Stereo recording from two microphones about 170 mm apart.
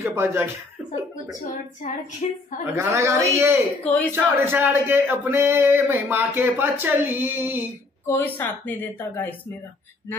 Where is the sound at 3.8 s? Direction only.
10° left (ahead or behind).